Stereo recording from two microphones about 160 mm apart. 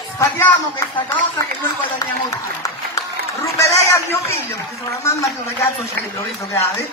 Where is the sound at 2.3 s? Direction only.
20° left (ahead or behind).